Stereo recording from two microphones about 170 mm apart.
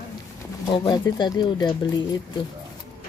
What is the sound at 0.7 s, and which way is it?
Speech, 25° left (ahead or behind).